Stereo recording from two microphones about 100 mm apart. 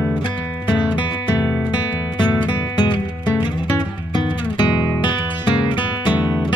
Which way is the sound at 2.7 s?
50° left (ahead or behind).